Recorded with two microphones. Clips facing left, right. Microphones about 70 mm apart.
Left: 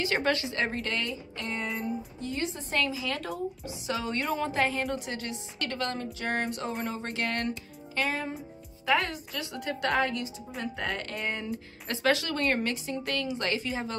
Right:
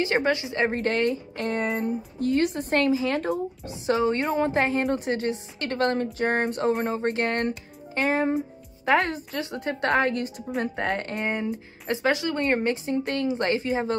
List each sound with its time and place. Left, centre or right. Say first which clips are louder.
0.0 s a woman's voice: right 4 dB; right
1.0 s a woman's voice: right 10 dB; right
2.8 s a woman's voice: right 7 dB; right